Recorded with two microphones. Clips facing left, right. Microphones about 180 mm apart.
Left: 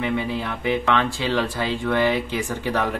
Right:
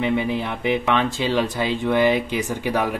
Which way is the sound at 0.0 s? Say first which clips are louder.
Right 3 dB; 20° right (ahead or behind).